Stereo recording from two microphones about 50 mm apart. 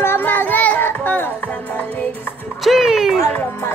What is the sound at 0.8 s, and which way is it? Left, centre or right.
Music, left.